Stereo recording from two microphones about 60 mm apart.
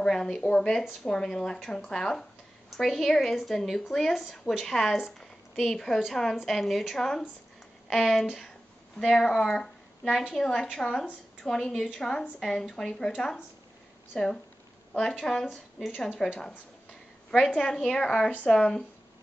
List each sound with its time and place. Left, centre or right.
0.0 s a woman's voice: centre
11.7 s speech: centre
12.0 s a woman's voice: centre
14.1 s a woman's voice: centre
17.5 s a woman's voice: centre